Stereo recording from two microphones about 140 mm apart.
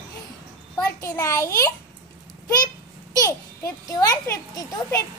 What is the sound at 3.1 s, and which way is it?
A child's voice, 25° left (ahead or behind).